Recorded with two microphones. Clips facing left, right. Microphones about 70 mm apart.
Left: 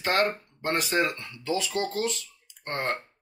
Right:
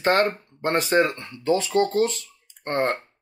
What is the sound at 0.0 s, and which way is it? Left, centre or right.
Speech, right.